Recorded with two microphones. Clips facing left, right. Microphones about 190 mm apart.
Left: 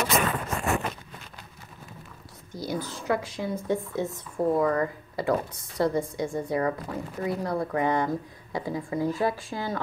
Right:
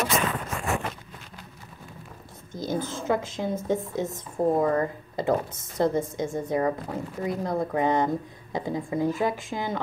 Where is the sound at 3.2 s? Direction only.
20° right (ahead or behind).